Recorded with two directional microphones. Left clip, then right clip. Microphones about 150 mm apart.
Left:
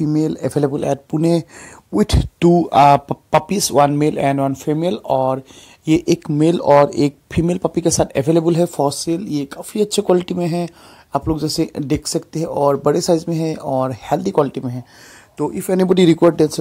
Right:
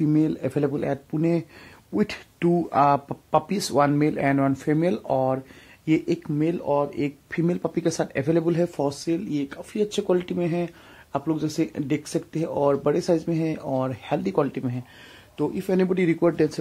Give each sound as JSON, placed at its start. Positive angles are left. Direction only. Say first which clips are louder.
{"t": 0.1, "sound": "speech", "louder": "left 5 dB", "side_deg": 30}
{"t": 2.5, "sound": "speech", "louder": "left 9 dB", "side_deg": 35}
{"t": 4.5, "sound": "speech", "louder": "left 4 dB", "side_deg": 20}
{"t": 5.9, "sound": "speech", "louder": "left 7 dB", "side_deg": 40}
{"t": 6.4, "sound": "speech", "louder": "left 13 dB", "side_deg": 60}
{"t": 7.4, "sound": "speech", "louder": "left 7 dB", "side_deg": 35}
{"t": 15.9, "sound": "speech", "louder": "left 10 dB", "side_deg": 55}
{"t": 16.3, "sound": "speech", "louder": "left 8 dB", "side_deg": 30}